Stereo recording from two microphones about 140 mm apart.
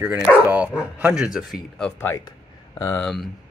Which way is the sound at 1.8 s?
15° left (ahead or behind).